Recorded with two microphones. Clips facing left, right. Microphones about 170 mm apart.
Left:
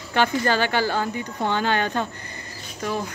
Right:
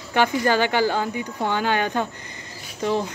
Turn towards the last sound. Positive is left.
turn(degrees=-20)  # may be behind; listen again after turning